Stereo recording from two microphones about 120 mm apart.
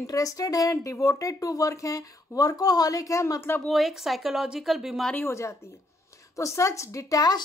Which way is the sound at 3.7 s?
Centre (ahead or behind).